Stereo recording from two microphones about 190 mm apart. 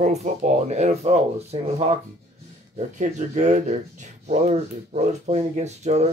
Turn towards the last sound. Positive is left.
turn(degrees=-35)  # may be behind; listen again after turning